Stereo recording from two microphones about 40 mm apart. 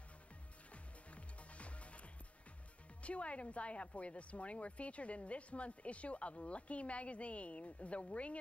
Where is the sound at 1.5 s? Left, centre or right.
Left.